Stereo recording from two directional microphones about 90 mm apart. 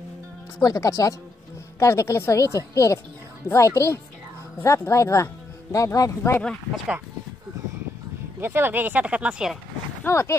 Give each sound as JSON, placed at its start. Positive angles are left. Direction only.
{"t": 0.6, "sound": "speech", "side_deg": 40}
{"t": 8.4, "sound": "speech", "side_deg": -25}
{"t": 10.0, "sound": "speech", "side_deg": 30}